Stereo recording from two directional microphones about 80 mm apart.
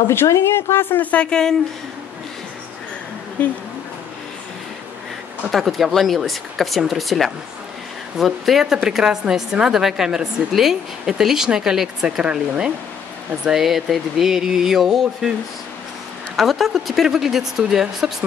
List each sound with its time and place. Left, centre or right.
0.1 s speech: left
1.1 s a woman's voice: centre
5.5 s a woman's voice: centre
16.3 s speech: centre